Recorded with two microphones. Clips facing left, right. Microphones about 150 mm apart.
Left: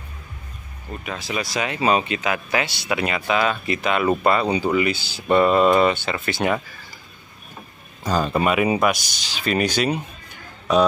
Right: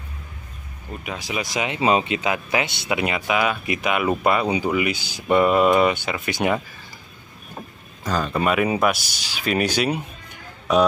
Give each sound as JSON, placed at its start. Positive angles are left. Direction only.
{"t": 1.0, "sound": "speech", "side_deg": -15}
{"t": 8.0, "sound": "speech", "side_deg": 15}
{"t": 8.7, "sound": "speech", "side_deg": -5}